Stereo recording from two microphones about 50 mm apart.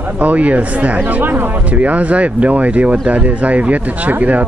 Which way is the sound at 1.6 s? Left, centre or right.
Right.